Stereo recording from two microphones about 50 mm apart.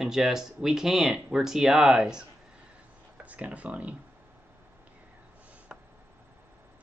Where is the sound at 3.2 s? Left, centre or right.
Right.